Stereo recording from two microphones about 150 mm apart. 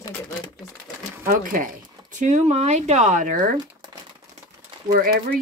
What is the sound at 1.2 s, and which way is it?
Speech, 65° right (ahead or behind).